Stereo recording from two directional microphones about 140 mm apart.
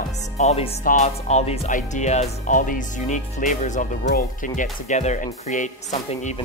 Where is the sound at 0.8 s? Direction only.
65° left (ahead or behind).